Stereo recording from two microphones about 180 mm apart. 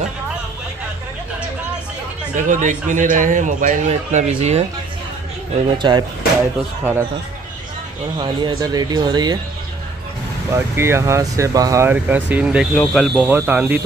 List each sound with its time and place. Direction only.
2.3 s a man's voice: 45° right (ahead or behind)
5.8 s speech: 25° right (ahead or behind)
6.8 s speech: 10° right (ahead or behind)
8.2 s speech: 25° right (ahead or behind)
10.5 s speech: 15° right (ahead or behind)
12.7 s speech: 5° left (ahead or behind)